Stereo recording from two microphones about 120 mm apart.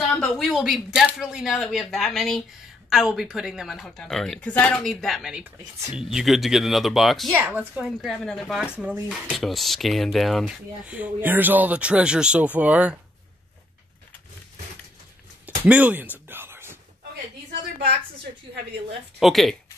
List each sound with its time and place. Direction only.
0.2 s a woman's voice: centre (ahead or behind)
7.3 s a woman's voice: 10° right (ahead or behind)
10.4 s speech: 10° right (ahead or behind)
15.4 s speech: 15° right (ahead or behind)
16.3 s whispering: 20° right (ahead or behind)
19.1 s a woman's voice: centre (ahead or behind)